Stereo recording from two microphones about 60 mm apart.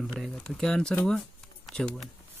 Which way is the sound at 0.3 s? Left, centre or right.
Centre.